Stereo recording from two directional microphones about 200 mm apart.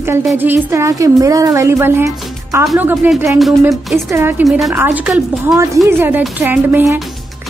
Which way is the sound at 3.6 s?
15° right (ahead or behind).